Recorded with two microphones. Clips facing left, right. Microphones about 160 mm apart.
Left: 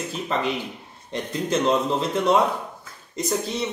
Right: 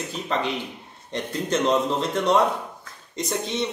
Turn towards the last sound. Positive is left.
turn(degrees=5)  # may be behind; listen again after turning